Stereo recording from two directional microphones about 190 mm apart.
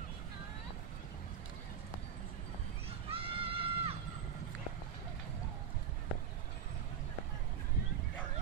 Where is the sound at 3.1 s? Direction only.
30° right (ahead or behind).